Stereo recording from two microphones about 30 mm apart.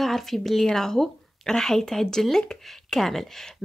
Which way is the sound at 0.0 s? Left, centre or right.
Centre.